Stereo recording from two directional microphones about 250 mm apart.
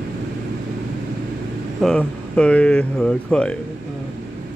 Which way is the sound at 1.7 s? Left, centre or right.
Centre.